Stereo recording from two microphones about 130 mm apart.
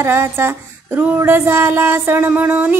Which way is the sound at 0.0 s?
20° right (ahead or behind).